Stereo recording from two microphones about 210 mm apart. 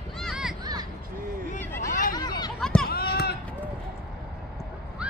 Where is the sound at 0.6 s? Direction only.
20° right (ahead or behind).